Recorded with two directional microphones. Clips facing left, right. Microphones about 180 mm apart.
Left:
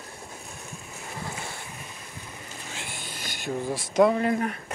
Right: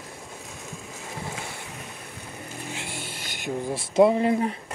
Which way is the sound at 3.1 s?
25° right (ahead or behind).